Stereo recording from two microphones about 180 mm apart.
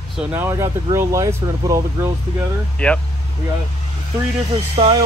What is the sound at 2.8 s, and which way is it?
Speech, 5° left (ahead or behind).